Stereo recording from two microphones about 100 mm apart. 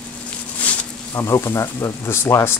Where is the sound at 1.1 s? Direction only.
25° left (ahead or behind).